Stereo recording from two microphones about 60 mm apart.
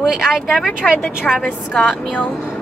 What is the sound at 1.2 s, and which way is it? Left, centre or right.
Speech, centre.